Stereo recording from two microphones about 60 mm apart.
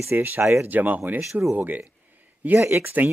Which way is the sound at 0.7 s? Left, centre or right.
Right.